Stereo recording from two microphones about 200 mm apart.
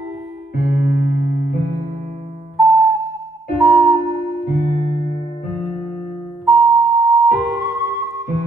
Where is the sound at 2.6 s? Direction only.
15° right (ahead or behind).